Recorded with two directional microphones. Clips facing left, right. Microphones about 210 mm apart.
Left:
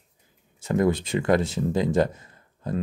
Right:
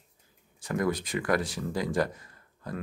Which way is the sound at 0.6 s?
25° left (ahead or behind).